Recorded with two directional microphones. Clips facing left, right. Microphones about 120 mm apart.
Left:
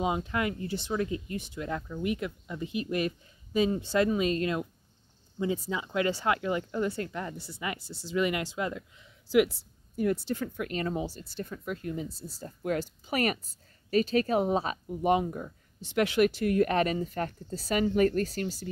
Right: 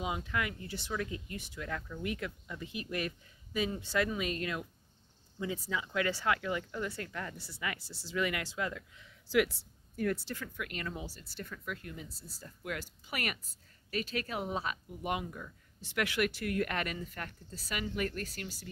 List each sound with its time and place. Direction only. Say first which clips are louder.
0.0 s speech: left 6 dB; 30° left (ahead or behind)
10.4 s speech: left 9 dB; 30° left (ahead or behind)
15.8 s speech: left 8 dB; 20° left (ahead or behind)